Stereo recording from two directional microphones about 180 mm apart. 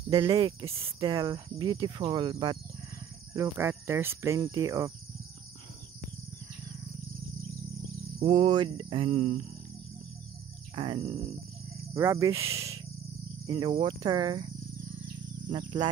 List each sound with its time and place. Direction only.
0.1 s speech: 25° right (ahead or behind)
3.3 s speech: 15° right (ahead or behind)
8.2 s a sound: 30° right (ahead or behind)
10.8 s a sound: 30° right (ahead or behind)
11.9 s speech: 15° right (ahead or behind)
15.5 s speech: 25° right (ahead or behind)